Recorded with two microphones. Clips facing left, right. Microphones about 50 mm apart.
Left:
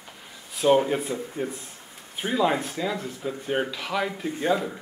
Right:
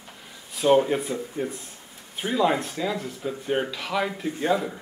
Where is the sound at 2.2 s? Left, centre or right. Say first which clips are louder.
Right 1 dB; centre.